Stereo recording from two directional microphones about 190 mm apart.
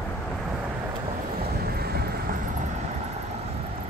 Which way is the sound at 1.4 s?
55° right (ahead or behind).